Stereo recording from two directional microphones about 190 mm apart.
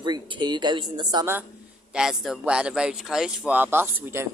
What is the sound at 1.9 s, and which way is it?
Speech, 5° right (ahead or behind).